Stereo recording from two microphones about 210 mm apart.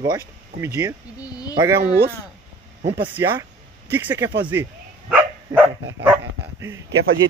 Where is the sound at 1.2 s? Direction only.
15° left (ahead or behind).